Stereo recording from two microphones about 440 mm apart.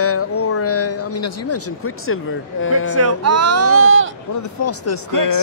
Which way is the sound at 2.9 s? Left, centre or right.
Right.